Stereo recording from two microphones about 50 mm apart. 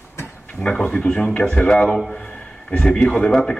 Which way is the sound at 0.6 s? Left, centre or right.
Left.